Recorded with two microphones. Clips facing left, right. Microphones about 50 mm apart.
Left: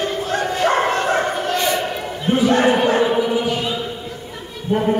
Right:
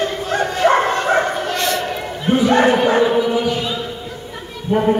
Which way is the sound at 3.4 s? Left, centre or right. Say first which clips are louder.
Right 1 dB; centre.